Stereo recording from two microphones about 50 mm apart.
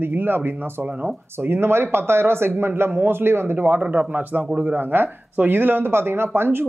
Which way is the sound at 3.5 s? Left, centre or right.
Right.